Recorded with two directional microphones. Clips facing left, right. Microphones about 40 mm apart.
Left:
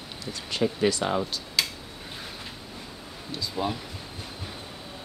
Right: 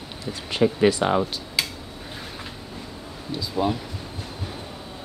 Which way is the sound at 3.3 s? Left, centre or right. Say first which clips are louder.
Right 5 dB; centre.